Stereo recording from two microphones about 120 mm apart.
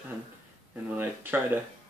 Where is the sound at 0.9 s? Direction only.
15° right (ahead or behind).